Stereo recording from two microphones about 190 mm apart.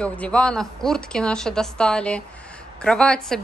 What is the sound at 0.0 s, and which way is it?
A woman's voice, 5° left (ahead or behind).